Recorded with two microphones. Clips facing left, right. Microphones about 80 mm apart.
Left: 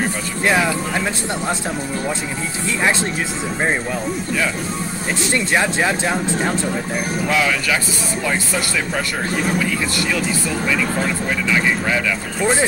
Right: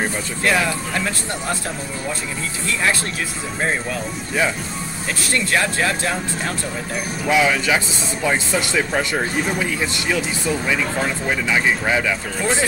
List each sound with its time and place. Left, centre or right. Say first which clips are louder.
0.5 s speech: left 2 dB; left
5.2 s speech: left 2 dB; left
7.2 s speech: right 3 dB; centre